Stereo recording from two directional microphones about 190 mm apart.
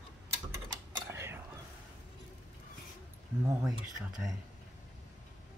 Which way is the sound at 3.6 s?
5° right (ahead or behind).